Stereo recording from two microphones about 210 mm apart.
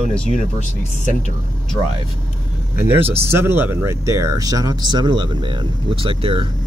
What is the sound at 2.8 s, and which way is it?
Speech, 10° right (ahead or behind).